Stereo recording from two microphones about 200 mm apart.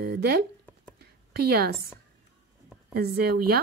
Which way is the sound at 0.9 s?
50° right (ahead or behind).